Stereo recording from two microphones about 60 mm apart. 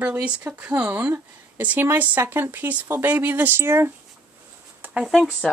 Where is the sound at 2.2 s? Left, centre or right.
Right.